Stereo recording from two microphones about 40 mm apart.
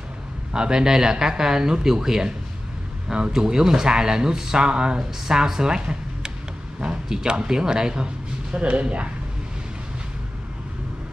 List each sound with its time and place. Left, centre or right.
0.5 s a woman's voice: right